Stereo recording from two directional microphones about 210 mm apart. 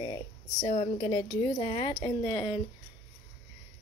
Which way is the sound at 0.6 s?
20° left (ahead or behind).